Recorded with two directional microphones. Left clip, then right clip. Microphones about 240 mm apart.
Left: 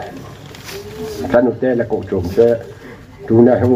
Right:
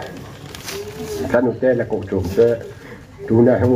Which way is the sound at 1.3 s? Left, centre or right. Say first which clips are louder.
Left 3 dB; left.